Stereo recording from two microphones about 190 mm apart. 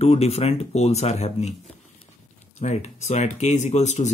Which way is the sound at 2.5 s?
35° left (ahead or behind).